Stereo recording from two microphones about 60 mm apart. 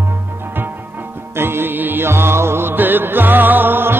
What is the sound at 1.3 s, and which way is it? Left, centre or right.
Music, right.